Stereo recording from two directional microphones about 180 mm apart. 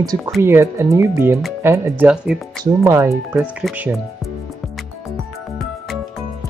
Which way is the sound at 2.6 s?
15° right (ahead or behind).